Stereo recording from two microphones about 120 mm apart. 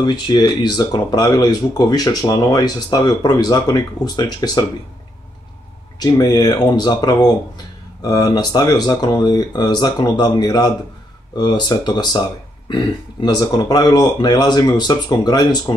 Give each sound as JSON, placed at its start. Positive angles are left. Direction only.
{"t": 0.0, "sound": "speech", "side_deg": 40}
{"t": 5.9, "sound": "speech", "side_deg": 35}